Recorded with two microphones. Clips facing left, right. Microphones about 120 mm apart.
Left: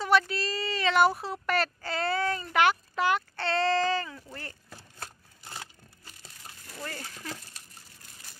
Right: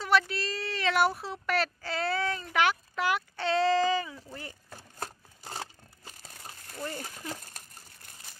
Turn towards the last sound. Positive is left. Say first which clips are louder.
# right 2 dB
turn(degrees=-15)  # may be behind; listen again after turning